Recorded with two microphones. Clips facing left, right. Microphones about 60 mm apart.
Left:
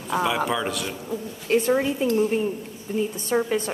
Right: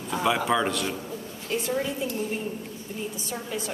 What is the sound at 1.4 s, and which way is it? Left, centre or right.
Speech, left.